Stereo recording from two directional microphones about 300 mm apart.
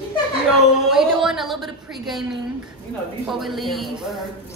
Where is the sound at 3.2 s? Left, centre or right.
Centre.